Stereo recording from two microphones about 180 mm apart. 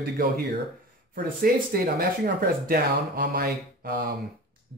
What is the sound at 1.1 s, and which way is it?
Speech, 55° right (ahead or behind).